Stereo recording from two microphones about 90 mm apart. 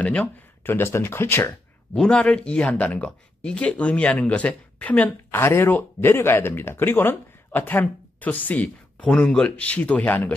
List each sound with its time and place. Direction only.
0.0 s speech: 15° left (ahead or behind)
0.7 s speech: 25° left (ahead or behind)
2.0 s speech: 10° left (ahead or behind)